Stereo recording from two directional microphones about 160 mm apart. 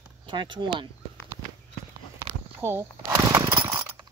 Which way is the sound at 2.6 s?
15° right (ahead or behind).